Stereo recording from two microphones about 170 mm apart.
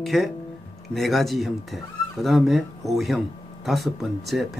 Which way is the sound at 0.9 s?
Centre (ahead or behind).